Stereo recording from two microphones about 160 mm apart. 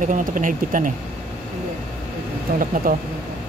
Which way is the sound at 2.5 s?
70° right (ahead or behind).